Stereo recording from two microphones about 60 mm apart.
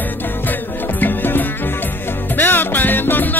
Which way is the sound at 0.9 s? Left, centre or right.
Left.